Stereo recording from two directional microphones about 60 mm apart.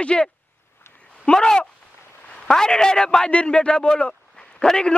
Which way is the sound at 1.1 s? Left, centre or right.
Centre.